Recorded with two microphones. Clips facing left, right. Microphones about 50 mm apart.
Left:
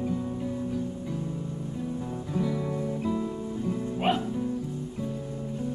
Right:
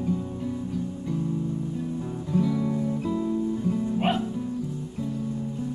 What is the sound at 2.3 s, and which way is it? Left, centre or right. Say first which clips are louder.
Music: right 5 dB; centre.